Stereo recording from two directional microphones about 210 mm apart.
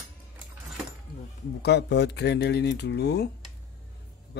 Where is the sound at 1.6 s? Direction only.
50° left (ahead or behind).